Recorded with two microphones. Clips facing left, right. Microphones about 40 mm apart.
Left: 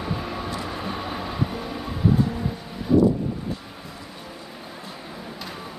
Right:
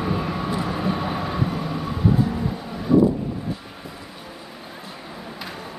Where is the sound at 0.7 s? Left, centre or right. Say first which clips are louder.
Right 5 dB; centre.